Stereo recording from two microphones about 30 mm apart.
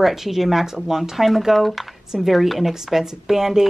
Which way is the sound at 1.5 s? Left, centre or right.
Centre.